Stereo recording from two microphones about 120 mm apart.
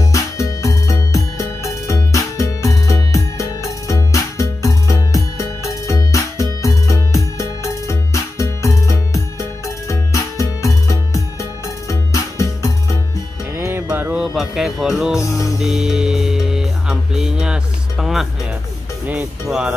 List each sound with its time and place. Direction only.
0.0 s music: 25° left (ahead or behind)
13.6 s music: 20° right (ahead or behind)
14.1 s music: 5° right (ahead or behind)
15.1 s music: 25° left (ahead or behind)
15.6 s music: 5° right (ahead or behind)